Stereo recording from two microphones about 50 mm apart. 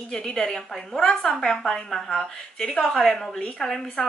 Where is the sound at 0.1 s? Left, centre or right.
Centre.